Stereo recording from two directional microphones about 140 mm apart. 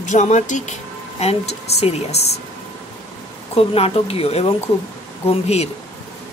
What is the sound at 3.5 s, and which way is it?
Speech, 45° left (ahead or behind).